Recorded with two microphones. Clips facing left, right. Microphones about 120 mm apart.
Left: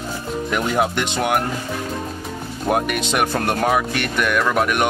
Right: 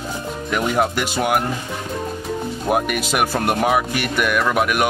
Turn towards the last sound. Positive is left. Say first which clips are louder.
# even
turn(degrees=-5)  # may be behind; listen again after turning